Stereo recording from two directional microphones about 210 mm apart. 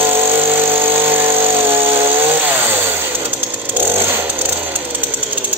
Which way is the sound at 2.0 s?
10° right (ahead or behind).